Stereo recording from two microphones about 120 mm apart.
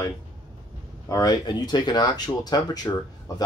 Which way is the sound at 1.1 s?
35° left (ahead or behind).